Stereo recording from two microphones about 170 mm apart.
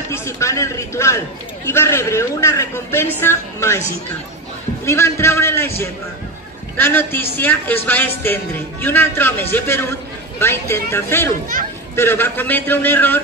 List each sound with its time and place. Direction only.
0.1 s a woman's voice: 15° left (ahead or behind)
6.8 s a woman's voice: 15° left (ahead or behind)